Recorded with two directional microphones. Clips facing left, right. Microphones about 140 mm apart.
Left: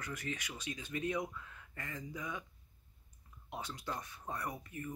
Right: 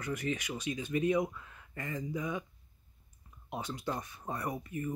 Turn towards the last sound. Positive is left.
turn(degrees=-10)  # may be behind; listen again after turning